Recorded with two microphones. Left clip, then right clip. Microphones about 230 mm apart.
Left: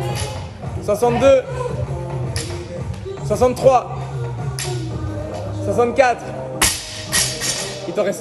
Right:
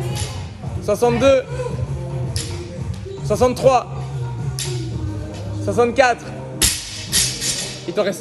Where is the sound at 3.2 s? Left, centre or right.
Centre.